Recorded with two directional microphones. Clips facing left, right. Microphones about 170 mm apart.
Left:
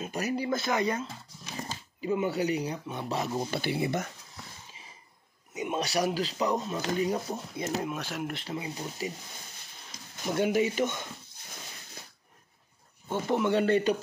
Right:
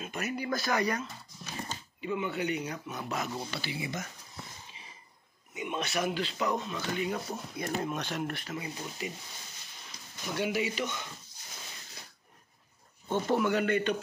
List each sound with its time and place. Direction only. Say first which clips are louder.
0.0 s speech: left 4 dB; 35° left (ahead or behind)
2.0 s speech: left 5 dB; 35° left (ahead or behind); by 4.0 s 55° left (ahead or behind)
5.5 s speech: left 4 dB; 40° left (ahead or behind)
7.2 s speech: left 2 dB; 25° left (ahead or behind)
7.8 s speech: even; 5° left (ahead or behind)
8.3 s speech: left 2 dB; 25° left (ahead or behind)
10.3 s speech: left 5 dB; 45° left (ahead or behind)
13.1 s speech: even; 15° left (ahead or behind)
13.5 s speech: left 4 dB; 30° left (ahead or behind)